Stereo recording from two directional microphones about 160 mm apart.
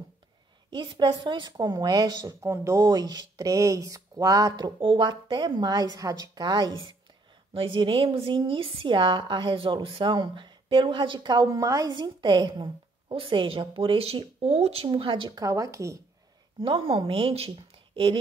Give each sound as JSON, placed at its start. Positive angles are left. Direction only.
{"t": 0.7, "sound": "a woman's voice", "side_deg": -30}
{"t": 16.6, "sound": "a woman's voice", "side_deg": -35}